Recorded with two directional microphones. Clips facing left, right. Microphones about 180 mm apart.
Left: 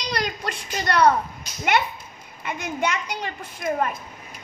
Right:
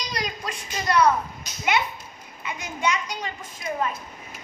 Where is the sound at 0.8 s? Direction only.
70° left (ahead or behind).